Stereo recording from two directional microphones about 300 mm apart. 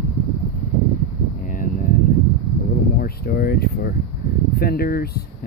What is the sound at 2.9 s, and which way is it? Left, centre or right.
Speech, left.